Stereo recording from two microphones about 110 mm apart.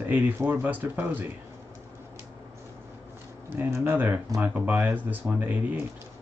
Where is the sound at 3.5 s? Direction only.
20° right (ahead or behind).